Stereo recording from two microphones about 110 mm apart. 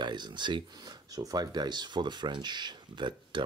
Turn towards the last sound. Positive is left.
turn(degrees=-45)  # may be behind; listen again after turning